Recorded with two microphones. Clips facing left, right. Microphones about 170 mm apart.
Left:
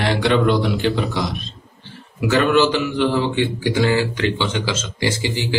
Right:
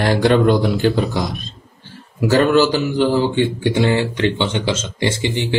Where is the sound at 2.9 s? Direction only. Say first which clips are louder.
Right 3 dB; 35° right (ahead or behind).